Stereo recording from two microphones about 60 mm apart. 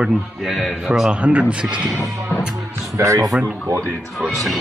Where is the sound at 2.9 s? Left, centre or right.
Right.